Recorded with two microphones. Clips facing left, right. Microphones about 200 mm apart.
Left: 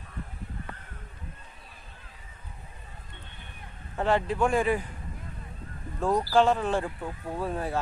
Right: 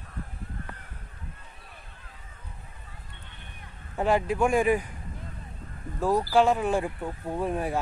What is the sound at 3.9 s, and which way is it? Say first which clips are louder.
Speech: right 1 dB; 10° right (ahead or behind).